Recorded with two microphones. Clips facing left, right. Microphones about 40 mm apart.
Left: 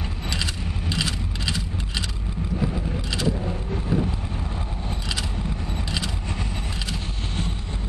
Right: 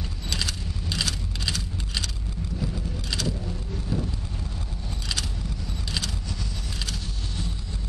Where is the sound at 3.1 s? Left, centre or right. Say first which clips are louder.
Left 4 dB; centre.